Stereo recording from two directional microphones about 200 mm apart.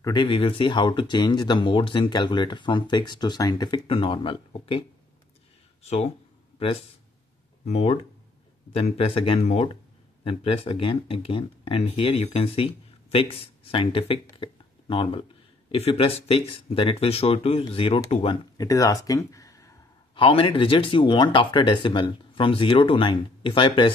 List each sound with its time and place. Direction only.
0.0 s speech: 25° left (ahead or behind)
5.9 s speech: 35° left (ahead or behind); by 19.7 s 15° left (ahead or behind)
20.2 s speech: 25° left (ahead or behind)